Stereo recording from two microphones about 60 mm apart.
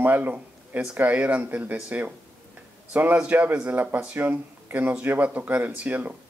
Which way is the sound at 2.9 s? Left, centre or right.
Right.